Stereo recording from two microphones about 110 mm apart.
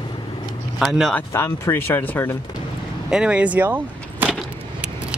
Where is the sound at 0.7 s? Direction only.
5° right (ahead or behind).